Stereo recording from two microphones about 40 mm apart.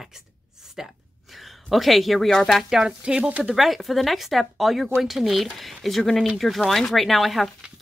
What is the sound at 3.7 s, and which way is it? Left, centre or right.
Speech, centre.